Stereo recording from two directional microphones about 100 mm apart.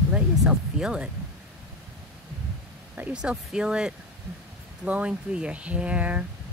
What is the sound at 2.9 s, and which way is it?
Speech, 15° right (ahead or behind).